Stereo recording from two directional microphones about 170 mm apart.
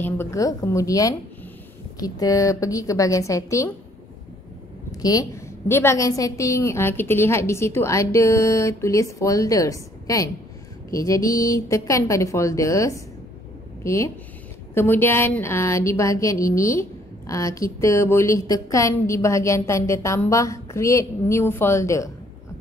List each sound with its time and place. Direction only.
0.0 s a woman's voice: 15° left (ahead or behind)
5.0 s a woman's voice: 20° left (ahead or behind)